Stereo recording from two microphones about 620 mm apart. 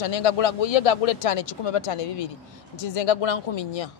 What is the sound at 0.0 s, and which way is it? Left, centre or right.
Speech, left.